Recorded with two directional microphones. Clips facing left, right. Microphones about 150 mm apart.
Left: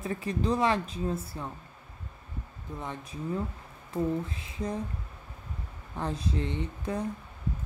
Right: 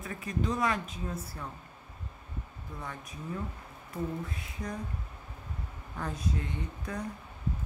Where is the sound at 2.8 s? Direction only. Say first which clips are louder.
Left 4 dB; 25° left (ahead or behind).